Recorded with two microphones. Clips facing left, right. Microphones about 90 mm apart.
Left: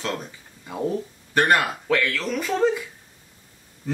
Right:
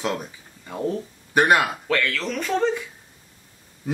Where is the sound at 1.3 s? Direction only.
10° right (ahead or behind).